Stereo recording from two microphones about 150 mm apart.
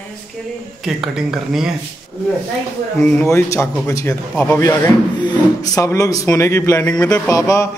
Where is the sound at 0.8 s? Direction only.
5° right (ahead or behind).